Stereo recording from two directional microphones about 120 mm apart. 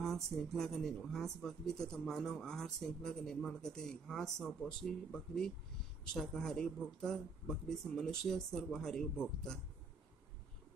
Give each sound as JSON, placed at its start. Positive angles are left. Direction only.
{"t": 0.0, "sound": "speech", "side_deg": 0}